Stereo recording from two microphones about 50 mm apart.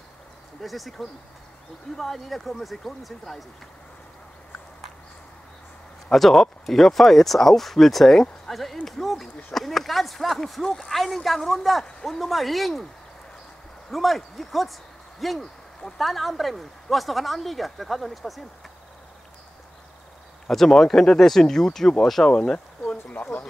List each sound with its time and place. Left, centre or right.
0.6 s speech: centre
6.0 s speech: centre
13.8 s speech: centre
20.4 s speech: centre
22.3 s a sound: centre